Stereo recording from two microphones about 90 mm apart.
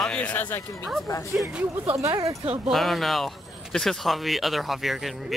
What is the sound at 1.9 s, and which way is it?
Speech, 35° right (ahead or behind).